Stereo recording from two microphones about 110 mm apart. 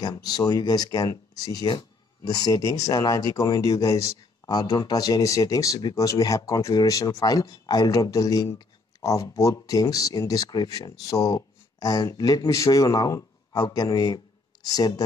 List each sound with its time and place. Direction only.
0.0 s speech: 35° left (ahead or behind)